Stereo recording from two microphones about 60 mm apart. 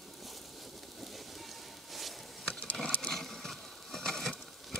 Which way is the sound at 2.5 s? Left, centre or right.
Left.